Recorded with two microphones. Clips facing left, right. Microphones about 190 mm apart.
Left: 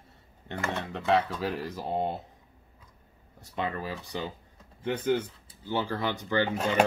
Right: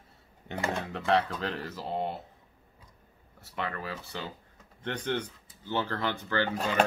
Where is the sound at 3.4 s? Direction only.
15° left (ahead or behind).